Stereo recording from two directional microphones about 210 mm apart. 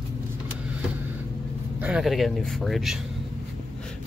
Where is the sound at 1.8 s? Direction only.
5° right (ahead or behind).